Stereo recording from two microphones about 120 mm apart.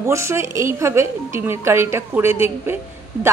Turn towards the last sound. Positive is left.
turn(degrees=-20)  # may be behind; listen again after turning